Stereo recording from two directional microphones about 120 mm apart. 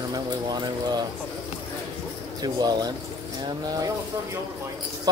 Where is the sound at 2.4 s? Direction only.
35° right (ahead or behind).